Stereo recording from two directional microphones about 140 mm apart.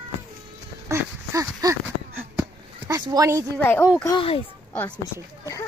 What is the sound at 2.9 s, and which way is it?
Speech, 25° right (ahead or behind).